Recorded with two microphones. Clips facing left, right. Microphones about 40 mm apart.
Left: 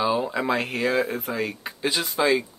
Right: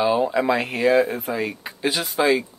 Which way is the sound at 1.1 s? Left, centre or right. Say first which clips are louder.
Right 2 dB; right.